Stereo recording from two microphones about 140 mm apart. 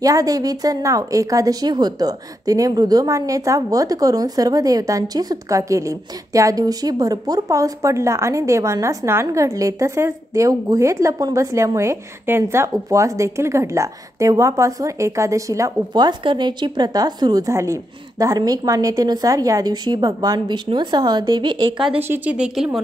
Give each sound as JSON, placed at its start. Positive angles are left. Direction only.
{"t": 0.0, "sound": "speech", "side_deg": -25}
{"t": 22.0, "sound": "speech", "side_deg": -15}